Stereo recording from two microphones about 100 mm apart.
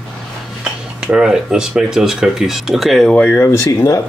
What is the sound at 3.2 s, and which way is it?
Speech, 25° left (ahead or behind).